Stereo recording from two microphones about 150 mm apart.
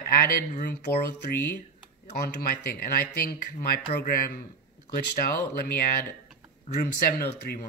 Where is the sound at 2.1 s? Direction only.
90° left.